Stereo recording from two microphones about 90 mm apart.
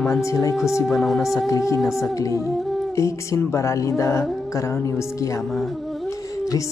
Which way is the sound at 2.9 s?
35° left (ahead or behind).